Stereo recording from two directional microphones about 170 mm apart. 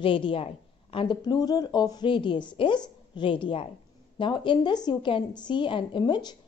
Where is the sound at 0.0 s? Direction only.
30° left (ahead or behind).